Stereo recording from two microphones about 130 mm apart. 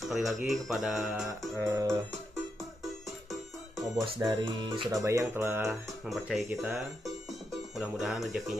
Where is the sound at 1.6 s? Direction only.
20° right (ahead or behind).